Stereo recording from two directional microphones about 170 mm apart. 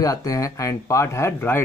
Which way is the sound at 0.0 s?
20° left (ahead or behind).